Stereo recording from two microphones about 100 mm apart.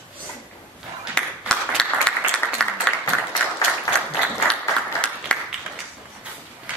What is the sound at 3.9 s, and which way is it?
Applause, 10° left (ahead or behind).